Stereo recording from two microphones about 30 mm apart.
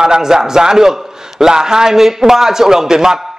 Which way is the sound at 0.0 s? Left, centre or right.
Right.